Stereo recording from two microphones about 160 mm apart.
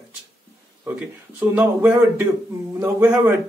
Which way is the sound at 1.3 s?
10° right (ahead or behind).